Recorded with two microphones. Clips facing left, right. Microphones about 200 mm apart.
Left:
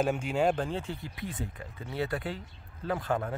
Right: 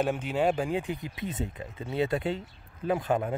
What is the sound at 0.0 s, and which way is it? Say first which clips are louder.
A man's voice: right 1 dB; centre (ahead or behind).